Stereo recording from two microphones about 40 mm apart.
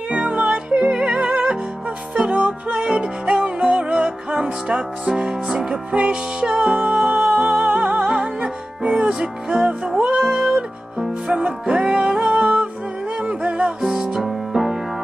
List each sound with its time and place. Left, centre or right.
0.7 s music: right
2.1 s music: right
5.9 s music: right
10.2 s music: centre
10.5 s music: centre
13.7 s music: centre
14.2 s music: centre